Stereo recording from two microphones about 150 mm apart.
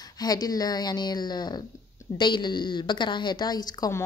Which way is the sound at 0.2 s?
25° left (ahead or behind).